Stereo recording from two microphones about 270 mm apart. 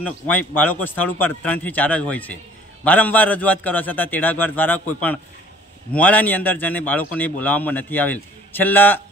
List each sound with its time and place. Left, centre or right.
0.0 s a man's voice: centre